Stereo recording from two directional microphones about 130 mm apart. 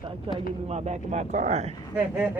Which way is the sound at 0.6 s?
60° right (ahead or behind).